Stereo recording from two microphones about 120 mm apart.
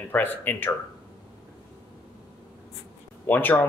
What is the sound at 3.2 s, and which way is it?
Speech, 15° left (ahead or behind).